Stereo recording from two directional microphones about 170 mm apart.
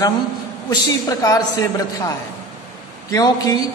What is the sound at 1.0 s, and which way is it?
A man's voice, 20° left (ahead or behind).